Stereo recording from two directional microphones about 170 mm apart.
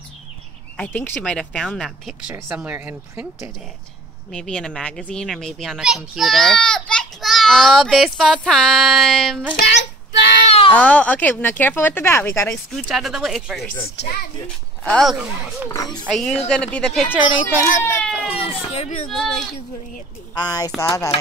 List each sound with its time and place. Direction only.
0.7 s speech: 10° left (ahead or behind)
2.5 s speech: 10° right (ahead or behind)
4.3 s a child's voice: 5° left (ahead or behind)
9.6 s a sound: 85° left
10.7 s speech: 10° left (ahead or behind)
12.7 s a child's voice: centre (ahead or behind)
14.9 s a child's voice: centre (ahead or behind)
15.7 s speech: 20° left (ahead or behind)
16.0 s a child's voice: 5° left (ahead or behind)
17.8 s baby cry: 5° left (ahead or behind)
18.3 s a sound: 35° left (ahead or behind)
19.0 s a child's voice: centre (ahead or behind)
20.3 s speech: 25° left (ahead or behind)